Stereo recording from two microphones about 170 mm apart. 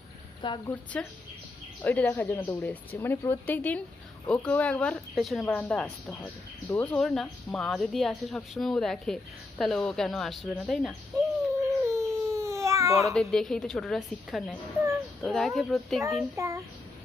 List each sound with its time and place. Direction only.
0.4 s speech: 30° left (ahead or behind)
0.9 s a woman's voice: 5° left (ahead or behind)
11.6 s baby cry: 15° right (ahead or behind)
13.1 s speech: centre (ahead or behind)
16.3 s a child's voice: 20° right (ahead or behind)